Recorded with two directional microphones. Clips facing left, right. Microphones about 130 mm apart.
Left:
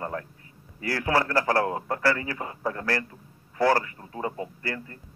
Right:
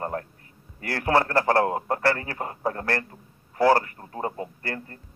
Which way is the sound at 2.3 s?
40° right (ahead or behind).